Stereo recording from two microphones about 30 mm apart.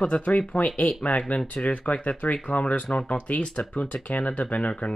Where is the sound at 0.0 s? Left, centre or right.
Left.